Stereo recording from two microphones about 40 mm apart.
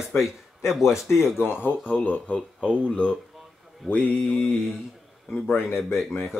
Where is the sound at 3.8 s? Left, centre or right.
Left.